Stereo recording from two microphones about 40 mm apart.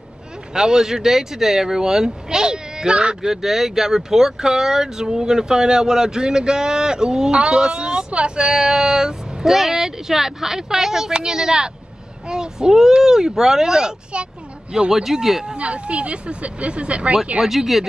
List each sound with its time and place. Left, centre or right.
0.5 s speech: centre
15.4 s speech: right
17.4 s speech: centre